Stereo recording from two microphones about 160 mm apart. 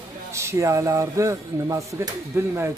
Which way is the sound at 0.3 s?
15° right (ahead or behind).